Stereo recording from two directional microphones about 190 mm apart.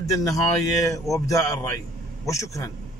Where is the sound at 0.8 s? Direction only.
15° left (ahead or behind).